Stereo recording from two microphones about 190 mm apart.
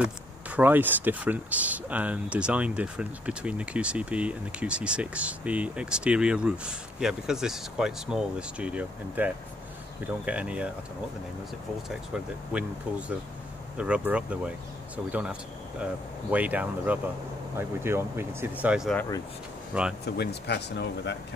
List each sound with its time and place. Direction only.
0.0 s speech: 10° right (ahead or behind)
11.9 s speech: 5° right (ahead or behind)
13.7 s speech: 5° right (ahead or behind)
20.2 s speech: 60° left (ahead or behind)